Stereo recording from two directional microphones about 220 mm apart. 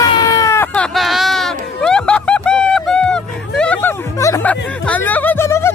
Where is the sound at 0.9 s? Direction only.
Centre (ahead or behind).